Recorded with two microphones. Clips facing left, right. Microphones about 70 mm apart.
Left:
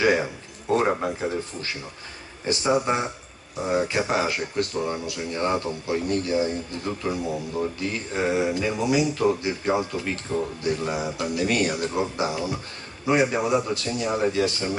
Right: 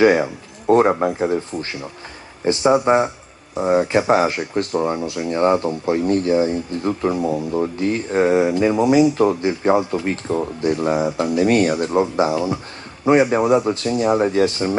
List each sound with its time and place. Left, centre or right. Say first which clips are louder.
0.2 s speech: right 6 dB; right